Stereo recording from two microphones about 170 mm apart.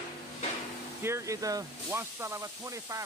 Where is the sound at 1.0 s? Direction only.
15° right (ahead or behind).